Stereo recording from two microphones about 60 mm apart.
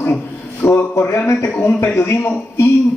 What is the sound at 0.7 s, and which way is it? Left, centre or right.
Speech, left.